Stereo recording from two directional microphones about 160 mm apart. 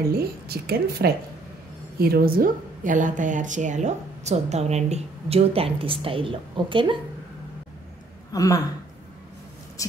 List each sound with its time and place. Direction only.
0.2 s a woman's voice: 80° right; by 7.0 s 30° right (ahead or behind)
8.3 s speech: 20° left (ahead or behind)
9.8 s speech: 20° left (ahead or behind)